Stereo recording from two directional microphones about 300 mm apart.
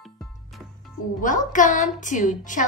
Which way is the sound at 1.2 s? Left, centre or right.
Left.